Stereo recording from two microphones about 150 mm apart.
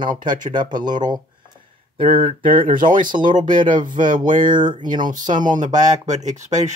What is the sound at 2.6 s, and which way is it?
Speech, 60° right (ahead or behind).